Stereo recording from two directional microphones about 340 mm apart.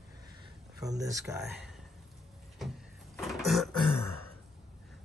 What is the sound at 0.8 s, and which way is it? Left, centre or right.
Speech, centre.